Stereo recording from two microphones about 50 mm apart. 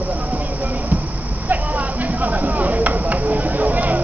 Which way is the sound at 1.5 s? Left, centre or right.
Right.